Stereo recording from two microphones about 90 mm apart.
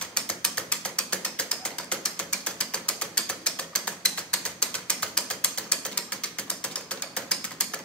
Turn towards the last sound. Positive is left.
turn(degrees=10)  # may be behind; listen again after turning